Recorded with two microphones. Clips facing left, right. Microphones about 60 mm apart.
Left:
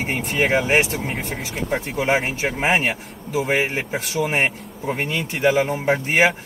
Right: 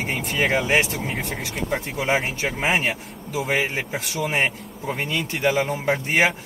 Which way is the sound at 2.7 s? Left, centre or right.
Left.